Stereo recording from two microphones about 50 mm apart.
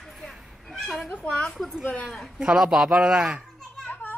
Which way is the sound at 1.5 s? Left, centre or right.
Centre.